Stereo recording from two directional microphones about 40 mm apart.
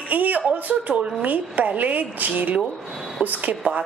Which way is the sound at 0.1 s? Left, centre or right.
Right.